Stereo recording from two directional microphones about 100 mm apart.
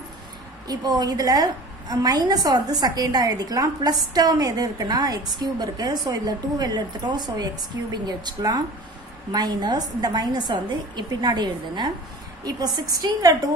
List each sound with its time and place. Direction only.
0.7 s a woman's voice: 40° right (ahead or behind)